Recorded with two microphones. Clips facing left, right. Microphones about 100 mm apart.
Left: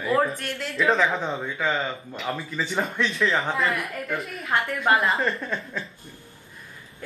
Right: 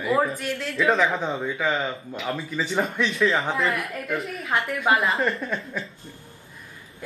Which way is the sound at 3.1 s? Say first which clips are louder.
Right 2 dB; centre (ahead or behind).